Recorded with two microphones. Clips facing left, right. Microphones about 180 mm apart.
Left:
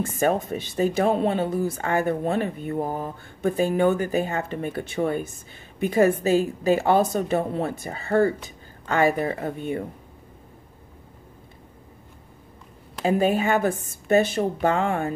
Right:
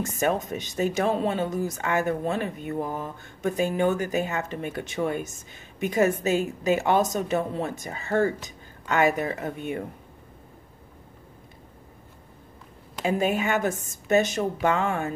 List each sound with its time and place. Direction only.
0.4 s speech: 30° left (ahead or behind)
2.8 s mantra: 50° left (ahead or behind)
3.4 s a woman's voice: 35° left (ahead or behind)
13.0 s speech: 35° left (ahead or behind)